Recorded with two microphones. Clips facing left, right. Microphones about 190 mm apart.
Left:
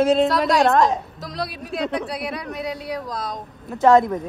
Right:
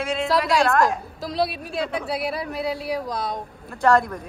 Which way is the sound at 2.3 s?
30° right (ahead or behind).